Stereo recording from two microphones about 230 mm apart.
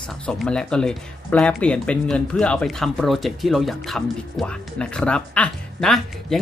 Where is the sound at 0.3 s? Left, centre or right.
Centre.